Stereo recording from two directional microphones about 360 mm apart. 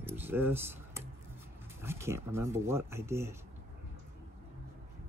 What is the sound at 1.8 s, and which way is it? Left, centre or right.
Speech, centre.